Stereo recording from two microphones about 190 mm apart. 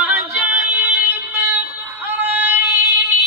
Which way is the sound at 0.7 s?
10° right (ahead or behind).